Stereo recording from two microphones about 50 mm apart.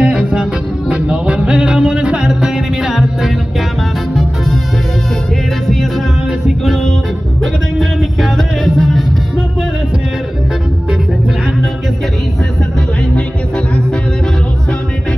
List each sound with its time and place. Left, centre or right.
0.0 s music: right; by 4.6 s centre
7.8 s music: centre